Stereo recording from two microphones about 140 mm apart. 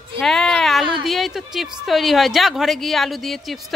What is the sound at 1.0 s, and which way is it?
A woman's voice, centre (ahead or behind).